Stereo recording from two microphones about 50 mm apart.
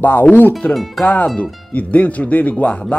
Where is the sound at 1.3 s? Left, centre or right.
Left.